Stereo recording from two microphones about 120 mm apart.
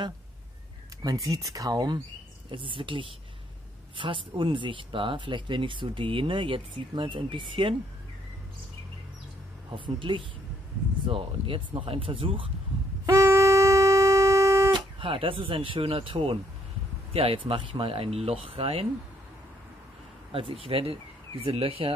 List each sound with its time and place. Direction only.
1.0 s speech: 30° right (ahead or behind)
2.5 s speech: 45° right (ahead or behind)
9.7 s speech: 45° right (ahead or behind)
13.0 s a sound: 30° right (ahead or behind)
14.7 s speech: 45° right (ahead or behind)
20.2 s speech: 50° right (ahead or behind)